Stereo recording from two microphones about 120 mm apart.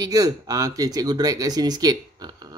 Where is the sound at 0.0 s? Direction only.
30° right (ahead or behind).